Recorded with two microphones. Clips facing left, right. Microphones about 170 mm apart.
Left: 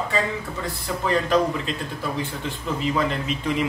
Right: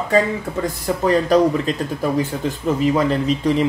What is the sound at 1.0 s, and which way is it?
Speech, 40° right (ahead or behind).